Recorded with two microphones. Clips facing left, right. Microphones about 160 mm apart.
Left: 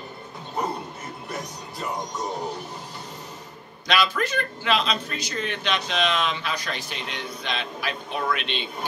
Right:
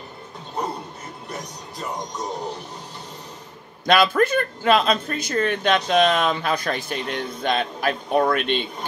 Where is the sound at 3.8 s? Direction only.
50° right (ahead or behind).